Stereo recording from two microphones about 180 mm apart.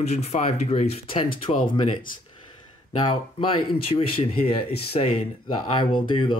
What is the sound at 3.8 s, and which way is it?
Speech, 30° left (ahead or behind).